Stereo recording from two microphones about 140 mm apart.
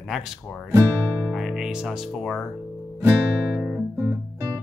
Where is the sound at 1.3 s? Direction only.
Centre (ahead or behind).